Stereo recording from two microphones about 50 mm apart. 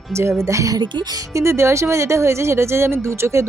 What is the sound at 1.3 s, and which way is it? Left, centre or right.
Speech, right.